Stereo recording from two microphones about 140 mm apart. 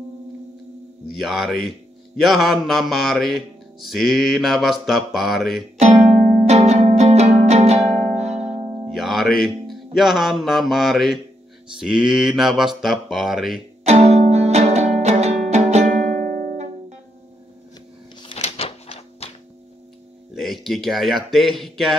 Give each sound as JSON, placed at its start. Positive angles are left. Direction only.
{"t": 1.1, "sound": "music", "side_deg": 0}
{"t": 5.8, "sound": "music", "side_deg": -50}
{"t": 8.9, "sound": "music", "side_deg": 0}
{"t": 13.8, "sound": "music", "side_deg": -50}
{"t": 18.2, "sound": "a sound", "side_deg": 45}
{"t": 20.3, "sound": "speech", "side_deg": 0}